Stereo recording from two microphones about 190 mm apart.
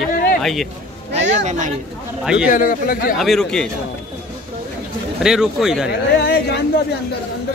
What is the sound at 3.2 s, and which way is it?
Speech, centre (ahead or behind).